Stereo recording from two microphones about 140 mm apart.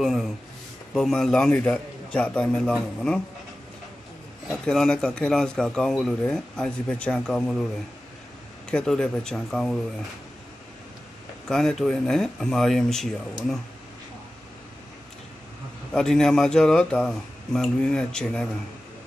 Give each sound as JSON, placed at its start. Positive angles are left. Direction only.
{"t": 0.0, "sound": "speech", "side_deg": 0}
{"t": 4.5, "sound": "speech", "side_deg": 5}
{"t": 8.6, "sound": "speech", "side_deg": 5}
{"t": 11.4, "sound": "speech", "side_deg": 0}
{"t": 15.9, "sound": "speech", "side_deg": 5}